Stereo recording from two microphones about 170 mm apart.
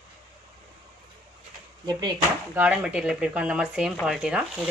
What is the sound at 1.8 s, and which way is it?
Speech, 25° right (ahead or behind).